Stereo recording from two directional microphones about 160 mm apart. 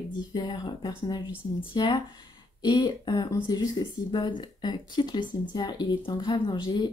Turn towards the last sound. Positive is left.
turn(degrees=30)  # may be behind; listen again after turning